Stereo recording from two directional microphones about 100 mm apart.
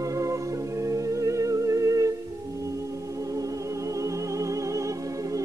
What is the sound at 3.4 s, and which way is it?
Music, 35° right (ahead or behind).